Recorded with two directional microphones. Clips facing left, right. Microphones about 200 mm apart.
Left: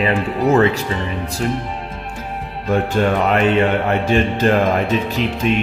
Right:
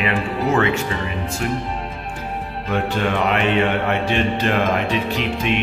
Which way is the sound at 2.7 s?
45° left (ahead or behind).